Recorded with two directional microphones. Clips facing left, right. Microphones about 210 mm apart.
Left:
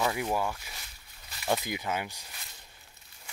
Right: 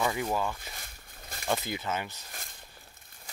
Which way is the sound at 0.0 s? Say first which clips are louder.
Even; 10° left (ahead or behind).